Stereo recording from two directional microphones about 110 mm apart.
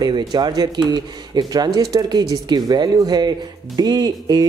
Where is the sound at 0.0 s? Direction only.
40° right (ahead or behind).